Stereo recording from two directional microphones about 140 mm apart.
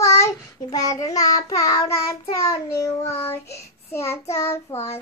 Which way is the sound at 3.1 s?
45° left (ahead or behind).